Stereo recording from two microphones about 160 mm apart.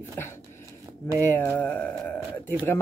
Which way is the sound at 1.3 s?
10° left (ahead or behind).